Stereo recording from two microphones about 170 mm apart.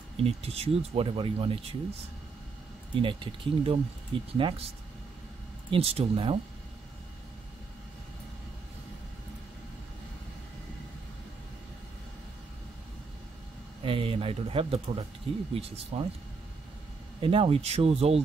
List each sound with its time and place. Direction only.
0.2 s speech: 35° right (ahead or behind)
2.9 s speech: 30° right (ahead or behind)
5.7 s speech: 35° right (ahead or behind)
13.8 s speech: 30° right (ahead or behind)
17.2 s speech: 35° right (ahead or behind)